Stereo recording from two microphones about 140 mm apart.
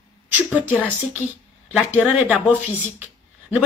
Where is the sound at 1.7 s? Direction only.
10° right (ahead or behind).